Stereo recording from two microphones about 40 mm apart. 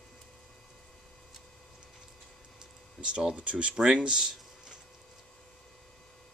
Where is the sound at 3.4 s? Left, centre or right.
Right.